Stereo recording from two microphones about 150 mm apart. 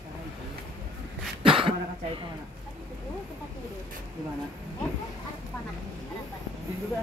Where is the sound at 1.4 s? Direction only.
35° right (ahead or behind).